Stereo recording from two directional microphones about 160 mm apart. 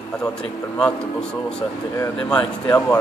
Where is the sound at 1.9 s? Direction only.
20° left (ahead or behind).